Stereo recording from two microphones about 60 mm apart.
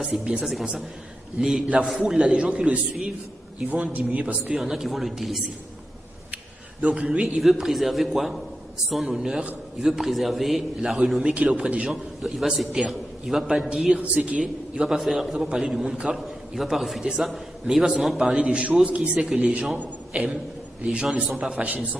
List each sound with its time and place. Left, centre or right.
0.0 s a man's voice: centre
2.3 s speech: centre
4.6 s a man's voice: centre
6.8 s a man's voice: centre
7.3 s a man's voice: centre
13.9 s a man's voice: right
15.0 s a man's voice: centre
15.3 s a man's voice: centre
16.5 s a man's voice: centre
18.4 s speech: centre
19.1 s a man's voice: centre
20.1 s a man's voice: centre